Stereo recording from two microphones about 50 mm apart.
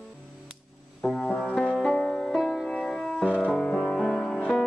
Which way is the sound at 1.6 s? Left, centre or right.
Centre.